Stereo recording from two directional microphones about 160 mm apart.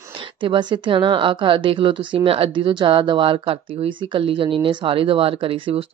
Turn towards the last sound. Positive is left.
turn(degrees=-35)  # may be behind; listen again after turning